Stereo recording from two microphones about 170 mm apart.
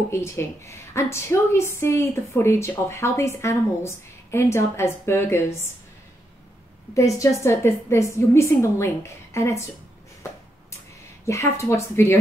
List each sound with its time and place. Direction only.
0.1 s a woman's voice: 15° left (ahead or behind)
6.9 s a woman's voice: 20° left (ahead or behind)
11.2 s a woman's voice: 15° left (ahead or behind)